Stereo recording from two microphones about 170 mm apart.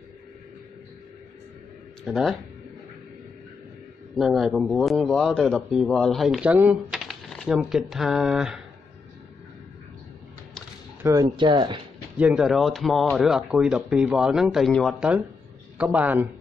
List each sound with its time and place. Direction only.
2.0 s speech: centre (ahead or behind)
4.2 s speech: centre (ahead or behind)
11.0 s speech: 20° right (ahead or behind)
12.2 s a man's voice: 5° right (ahead or behind)